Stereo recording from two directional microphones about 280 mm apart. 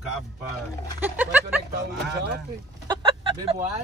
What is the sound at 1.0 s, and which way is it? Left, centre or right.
Speech, centre.